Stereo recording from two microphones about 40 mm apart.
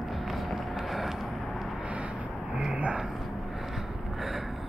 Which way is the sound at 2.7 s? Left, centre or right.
Right.